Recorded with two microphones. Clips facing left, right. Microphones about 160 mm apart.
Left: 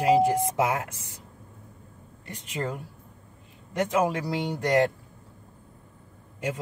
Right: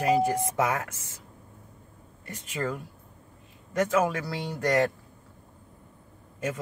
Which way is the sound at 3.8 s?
30° left (ahead or behind).